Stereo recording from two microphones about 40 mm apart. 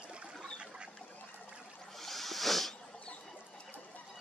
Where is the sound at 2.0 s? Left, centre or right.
Centre.